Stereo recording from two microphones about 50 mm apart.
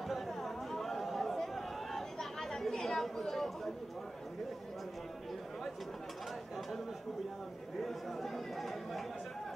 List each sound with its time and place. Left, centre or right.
0.1 s chatter: centre
7.8 s speech: centre